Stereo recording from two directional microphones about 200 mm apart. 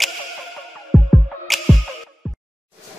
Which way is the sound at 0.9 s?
Centre (ahead or behind).